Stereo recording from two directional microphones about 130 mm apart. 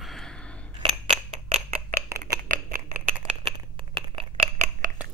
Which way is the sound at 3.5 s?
45° right (ahead or behind).